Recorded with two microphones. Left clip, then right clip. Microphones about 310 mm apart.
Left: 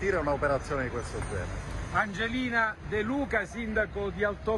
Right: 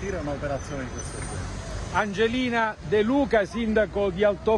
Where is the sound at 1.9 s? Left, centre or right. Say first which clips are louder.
Right 5 dB; right.